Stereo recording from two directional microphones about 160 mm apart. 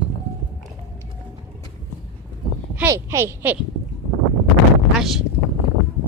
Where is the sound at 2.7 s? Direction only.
15° right (ahead or behind).